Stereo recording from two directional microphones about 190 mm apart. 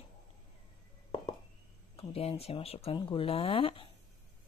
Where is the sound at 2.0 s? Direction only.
30° left (ahead or behind).